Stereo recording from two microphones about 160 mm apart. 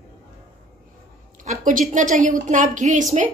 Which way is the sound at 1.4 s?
55° right (ahead or behind).